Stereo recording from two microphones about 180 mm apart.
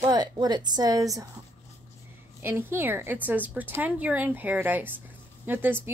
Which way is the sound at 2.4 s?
10° right (ahead or behind).